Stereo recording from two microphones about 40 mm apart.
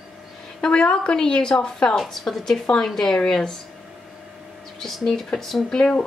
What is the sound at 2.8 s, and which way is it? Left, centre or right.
Speech, centre.